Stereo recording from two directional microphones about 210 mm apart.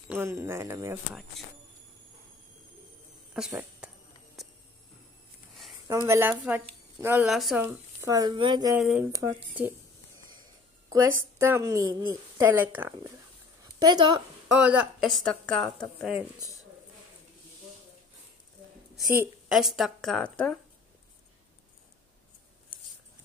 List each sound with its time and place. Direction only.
0.1 s a woman's voice: 10° right (ahead or behind)
3.3 s speech: 5° right (ahead or behind)
4.4 s a sound: centre (ahead or behind)
5.9 s a woman's voice: 15° right (ahead or behind)
8.7 s a woman's voice: 5° right (ahead or behind)
10.9 s a woman's voice: 15° right (ahead or behind)
13.7 s a woman's voice: 20° right (ahead or behind)
14.5 s a woman's voice: 5° right (ahead or behind)
19.5 s a woman's voice: centre (ahead or behind)